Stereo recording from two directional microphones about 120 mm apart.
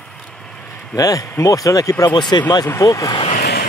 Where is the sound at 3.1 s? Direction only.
45° left (ahead or behind).